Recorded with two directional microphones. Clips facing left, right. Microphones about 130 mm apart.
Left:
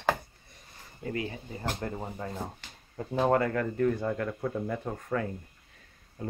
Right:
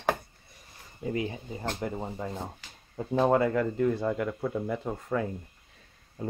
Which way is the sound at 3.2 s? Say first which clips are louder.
Right 2 dB; 10° right (ahead or behind).